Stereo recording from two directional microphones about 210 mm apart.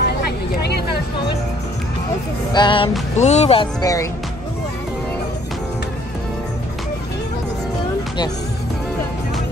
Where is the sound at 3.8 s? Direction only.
15° left (ahead or behind).